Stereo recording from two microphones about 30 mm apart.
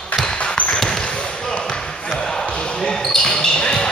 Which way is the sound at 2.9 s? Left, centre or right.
Centre.